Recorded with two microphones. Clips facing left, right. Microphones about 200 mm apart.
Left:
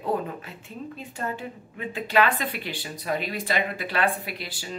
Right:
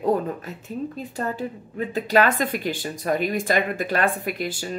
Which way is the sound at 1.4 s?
40° right (ahead or behind).